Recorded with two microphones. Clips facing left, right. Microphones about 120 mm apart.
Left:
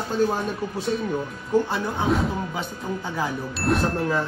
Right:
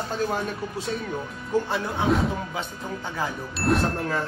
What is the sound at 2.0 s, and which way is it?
Speech, centre (ahead or behind).